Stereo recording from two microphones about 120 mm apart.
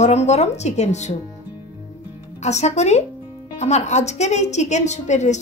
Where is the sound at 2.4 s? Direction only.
70° left (ahead or behind).